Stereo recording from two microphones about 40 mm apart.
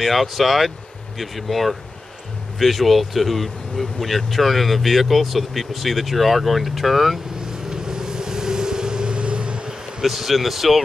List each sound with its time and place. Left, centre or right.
0.0 s speech: centre
7.7 s vehicle: centre
10.0 s speech: centre